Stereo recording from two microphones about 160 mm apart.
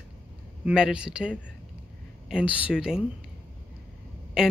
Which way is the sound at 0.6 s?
5° right (ahead or behind).